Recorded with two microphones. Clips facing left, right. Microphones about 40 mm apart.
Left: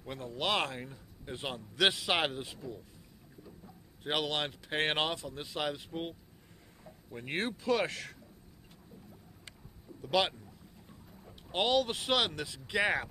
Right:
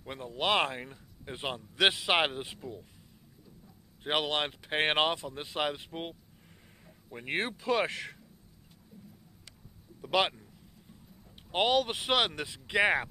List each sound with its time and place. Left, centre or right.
0.0 s speech: centre
4.0 s speech: centre
10.1 s speech: right
11.5 s speech: right